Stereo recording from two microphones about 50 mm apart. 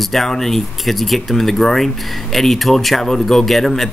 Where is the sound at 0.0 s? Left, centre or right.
Centre.